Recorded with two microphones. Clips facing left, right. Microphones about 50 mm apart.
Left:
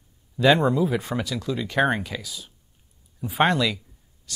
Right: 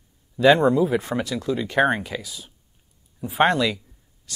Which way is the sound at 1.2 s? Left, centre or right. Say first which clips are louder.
Right 3 dB; right.